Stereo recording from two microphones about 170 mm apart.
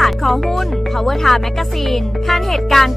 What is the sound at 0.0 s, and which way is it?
Speech, centre (ahead or behind).